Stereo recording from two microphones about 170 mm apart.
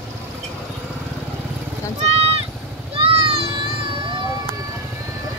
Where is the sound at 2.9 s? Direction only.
35° right (ahead or behind).